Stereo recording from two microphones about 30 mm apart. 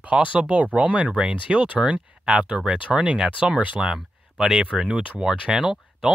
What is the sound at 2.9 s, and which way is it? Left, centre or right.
Speech, right.